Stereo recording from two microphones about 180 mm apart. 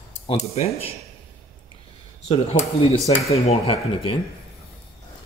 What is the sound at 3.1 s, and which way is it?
Speech, 30° left (ahead or behind).